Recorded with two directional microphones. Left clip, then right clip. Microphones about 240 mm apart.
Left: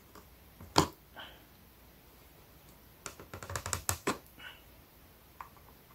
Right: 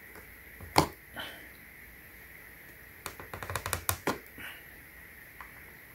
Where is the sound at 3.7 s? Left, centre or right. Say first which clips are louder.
Right 2 dB; centre.